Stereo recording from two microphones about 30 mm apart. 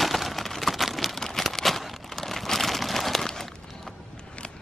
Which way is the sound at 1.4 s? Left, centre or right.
Centre.